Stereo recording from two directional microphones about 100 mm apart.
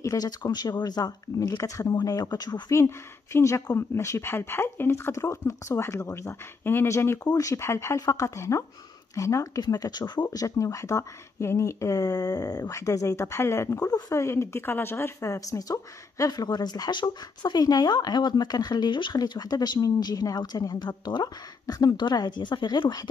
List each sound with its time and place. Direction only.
0.0 s speech: 35° left (ahead or behind)
3.3 s speech: 25° left (ahead or behind); by 23.0 s 45° left (ahead or behind)